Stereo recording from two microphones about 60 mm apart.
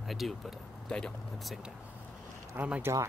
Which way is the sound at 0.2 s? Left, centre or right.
Centre.